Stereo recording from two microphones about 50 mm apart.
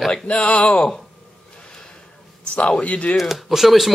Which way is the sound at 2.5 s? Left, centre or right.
Left.